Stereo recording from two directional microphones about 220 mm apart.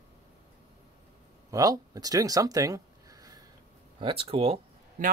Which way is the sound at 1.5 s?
15° right (ahead or behind).